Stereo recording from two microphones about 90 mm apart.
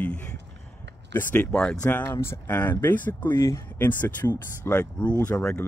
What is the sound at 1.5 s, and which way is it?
Speech, 10° left (ahead or behind).